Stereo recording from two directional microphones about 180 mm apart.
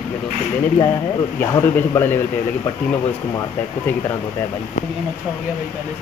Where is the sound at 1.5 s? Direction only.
15° left (ahead or behind).